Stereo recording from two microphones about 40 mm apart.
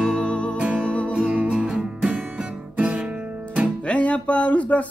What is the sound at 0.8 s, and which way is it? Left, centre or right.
Music, left.